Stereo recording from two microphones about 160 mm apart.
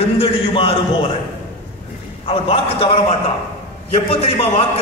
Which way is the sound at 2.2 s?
35° left (ahead or behind).